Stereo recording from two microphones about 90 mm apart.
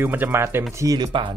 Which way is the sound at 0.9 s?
60° right (ahead or behind).